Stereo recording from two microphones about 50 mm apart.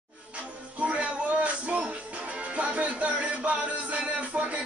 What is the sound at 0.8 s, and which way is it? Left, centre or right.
Music, right.